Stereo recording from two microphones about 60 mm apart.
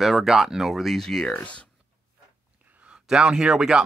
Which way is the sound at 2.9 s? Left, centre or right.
Centre.